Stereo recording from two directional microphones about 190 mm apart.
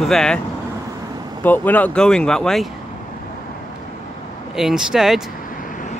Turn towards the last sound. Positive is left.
turn(degrees=0)  # may be behind; listen again after turning